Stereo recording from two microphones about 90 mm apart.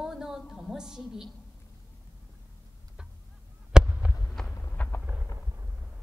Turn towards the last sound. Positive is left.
turn(degrees=20)  # may be behind; listen again after turning